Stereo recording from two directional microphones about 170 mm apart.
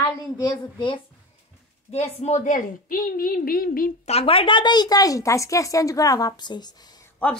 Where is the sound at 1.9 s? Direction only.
40° left (ahead or behind); by 3.9 s 60° left (ahead or behind).